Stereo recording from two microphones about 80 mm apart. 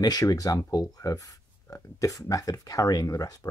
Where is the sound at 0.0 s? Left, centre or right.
Left.